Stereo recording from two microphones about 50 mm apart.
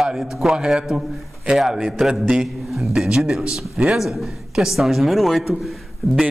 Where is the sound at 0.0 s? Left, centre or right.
Centre.